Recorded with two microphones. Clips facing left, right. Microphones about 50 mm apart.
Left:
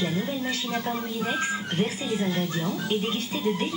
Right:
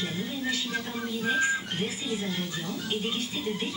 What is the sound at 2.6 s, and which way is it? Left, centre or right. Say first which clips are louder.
Speech: left 5 dB; centre.